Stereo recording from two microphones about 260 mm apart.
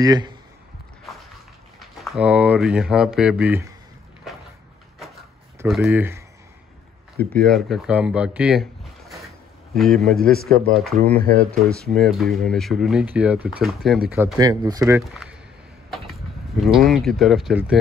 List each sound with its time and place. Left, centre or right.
0.0 s speech: centre
1.8 s speech: centre
4.9 s a sound: centre
7.2 s speech: centre
9.8 s speech: centre
15.0 s speech: centre